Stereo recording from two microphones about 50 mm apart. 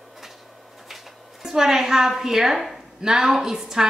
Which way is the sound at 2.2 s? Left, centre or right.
Centre.